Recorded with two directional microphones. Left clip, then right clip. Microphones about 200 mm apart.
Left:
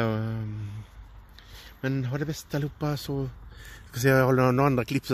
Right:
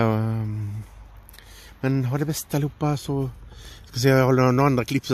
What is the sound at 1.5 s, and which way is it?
Speech, 30° right (ahead or behind).